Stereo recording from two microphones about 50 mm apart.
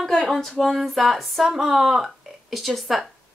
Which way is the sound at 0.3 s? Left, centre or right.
Centre.